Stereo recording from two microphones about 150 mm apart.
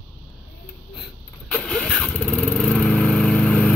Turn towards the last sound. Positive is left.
turn(degrees=10)  # may be behind; listen again after turning